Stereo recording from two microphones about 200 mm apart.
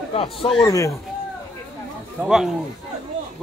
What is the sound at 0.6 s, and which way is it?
Speech, 15° left (ahead or behind).